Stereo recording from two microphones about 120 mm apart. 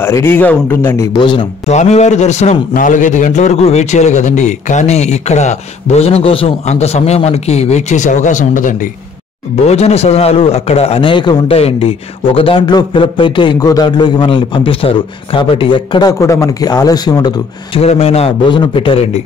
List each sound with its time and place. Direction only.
0.0 s a man's voice: 20° left (ahead or behind)
1.1 s a man's voice: 40° left (ahead or behind)
1.7 s a man's voice: 70° left (ahead or behind)
2.8 s a man's voice: 90° left
3.5 s a man's voice: 60° left (ahead or behind); by 8.7 s 90° left
9.7 s a man's voice: 60° left (ahead or behind); by 17.3 s 35° left (ahead or behind)
17.7 s a man's voice: 55° left (ahead or behind)
18.5 s a man's voice: 45° left (ahead or behind)